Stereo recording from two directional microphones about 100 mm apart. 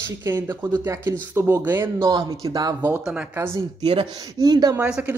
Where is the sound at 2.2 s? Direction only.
35° right (ahead or behind).